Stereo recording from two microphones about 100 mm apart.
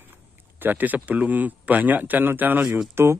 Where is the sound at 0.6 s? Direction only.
20° right (ahead or behind).